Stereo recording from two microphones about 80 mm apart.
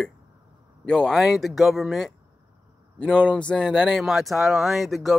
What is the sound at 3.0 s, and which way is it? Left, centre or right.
Speech, centre.